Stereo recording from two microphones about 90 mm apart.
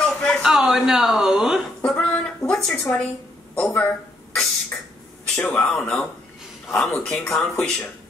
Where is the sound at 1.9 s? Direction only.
15° left (ahead or behind).